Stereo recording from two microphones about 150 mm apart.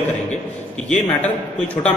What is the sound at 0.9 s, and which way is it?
A man's voice, 10° left (ahead or behind).